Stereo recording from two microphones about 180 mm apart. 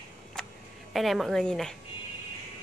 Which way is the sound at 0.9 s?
Centre (ahead or behind).